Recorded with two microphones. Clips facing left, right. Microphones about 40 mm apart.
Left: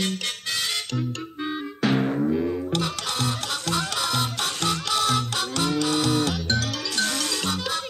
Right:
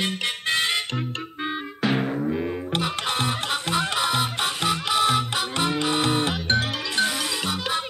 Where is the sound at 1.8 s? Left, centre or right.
Centre.